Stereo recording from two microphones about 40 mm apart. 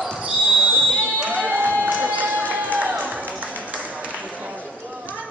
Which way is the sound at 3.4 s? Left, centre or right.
Right.